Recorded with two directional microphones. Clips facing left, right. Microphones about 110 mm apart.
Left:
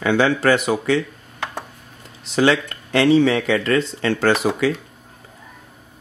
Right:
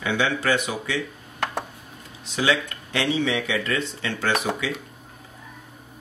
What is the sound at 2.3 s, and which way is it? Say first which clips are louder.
Speech: left 6 dB; 50° left (ahead or behind).